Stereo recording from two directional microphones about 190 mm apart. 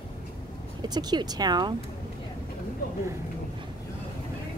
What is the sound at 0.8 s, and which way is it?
Speech, 20° right (ahead or behind).